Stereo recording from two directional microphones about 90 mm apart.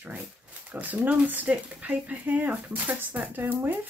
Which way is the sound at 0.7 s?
20° right (ahead or behind).